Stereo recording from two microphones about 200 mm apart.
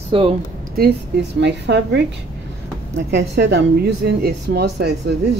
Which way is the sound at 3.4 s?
60° right (ahead or behind).